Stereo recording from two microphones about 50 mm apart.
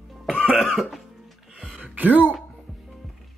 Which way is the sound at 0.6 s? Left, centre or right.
Centre.